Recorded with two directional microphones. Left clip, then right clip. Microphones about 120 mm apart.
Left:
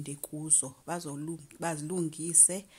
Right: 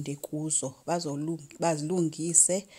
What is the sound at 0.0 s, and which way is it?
Speech, 25° right (ahead or behind).